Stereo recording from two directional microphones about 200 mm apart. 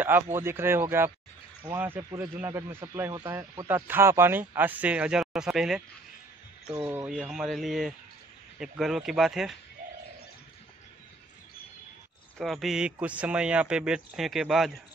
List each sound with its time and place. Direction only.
0.0 s speech: 10° right (ahead or behind)
6.7 s speech: 15° right (ahead or behind)
7.0 s speech: 5° right (ahead or behind)
12.4 s speech: centre (ahead or behind)